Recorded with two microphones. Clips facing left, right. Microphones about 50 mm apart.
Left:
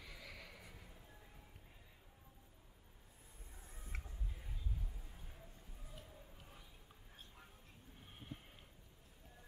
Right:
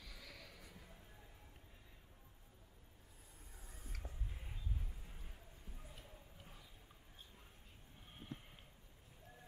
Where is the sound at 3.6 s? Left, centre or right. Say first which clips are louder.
Left 3 dB; left.